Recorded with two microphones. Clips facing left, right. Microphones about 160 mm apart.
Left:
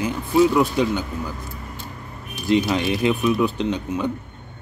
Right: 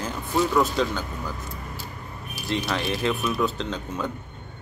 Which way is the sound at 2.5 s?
20° left (ahead or behind).